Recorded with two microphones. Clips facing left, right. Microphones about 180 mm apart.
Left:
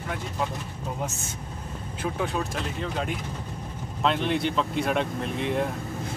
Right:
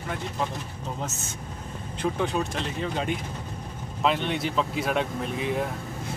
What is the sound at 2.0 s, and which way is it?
Speech, 5° left (ahead or behind).